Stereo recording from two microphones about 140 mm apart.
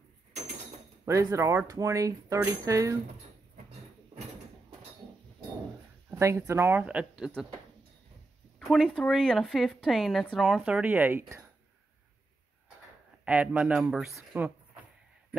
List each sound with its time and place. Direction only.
1.0 s speech: 20° right (ahead or behind)
6.0 s speech: 20° right (ahead or behind); by 7.4 s 5° right (ahead or behind)
8.5 s a woman's voice: centre (ahead or behind); by 11.4 s 15° right (ahead or behind)
13.2 s speech: 10° right (ahead or behind)